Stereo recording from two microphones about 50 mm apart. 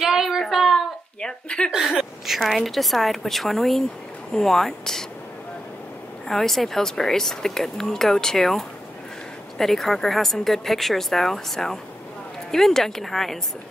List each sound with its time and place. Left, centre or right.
0.0 s a sound: centre
1.2 s speech: centre
1.7 s a woman's voice: centre
6.2 s a woman's voice: centre